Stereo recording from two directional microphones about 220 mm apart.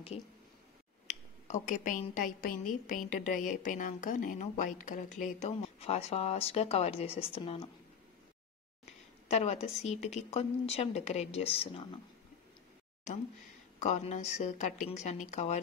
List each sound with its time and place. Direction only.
1.0 s a woman's voice: 35° left (ahead or behind)
9.3 s a woman's voice: 30° left (ahead or behind)
13.7 s a woman's voice: 30° left (ahead or behind)